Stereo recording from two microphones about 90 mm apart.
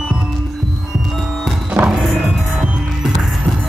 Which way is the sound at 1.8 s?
20° right (ahead or behind).